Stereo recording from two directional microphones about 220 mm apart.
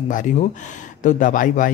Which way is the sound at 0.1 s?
35° left (ahead or behind).